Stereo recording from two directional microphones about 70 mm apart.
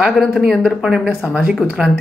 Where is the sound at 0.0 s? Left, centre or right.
Centre.